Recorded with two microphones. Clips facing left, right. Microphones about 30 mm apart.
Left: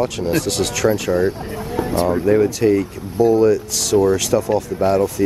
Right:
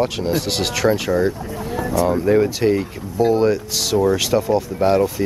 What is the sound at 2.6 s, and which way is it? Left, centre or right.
Speech, centre.